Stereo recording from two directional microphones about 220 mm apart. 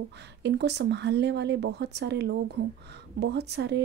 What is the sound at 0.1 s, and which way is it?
A woman's voice, 50° right (ahead or behind).